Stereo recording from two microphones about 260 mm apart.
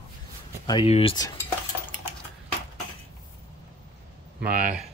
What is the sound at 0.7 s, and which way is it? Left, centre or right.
Speech, left.